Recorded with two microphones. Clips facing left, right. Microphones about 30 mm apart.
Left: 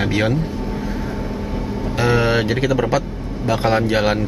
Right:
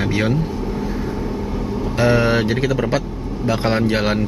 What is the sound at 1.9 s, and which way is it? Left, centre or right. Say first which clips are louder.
Speech: right 1 dB; centre.